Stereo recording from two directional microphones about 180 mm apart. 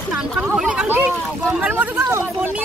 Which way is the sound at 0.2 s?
5° right (ahead or behind).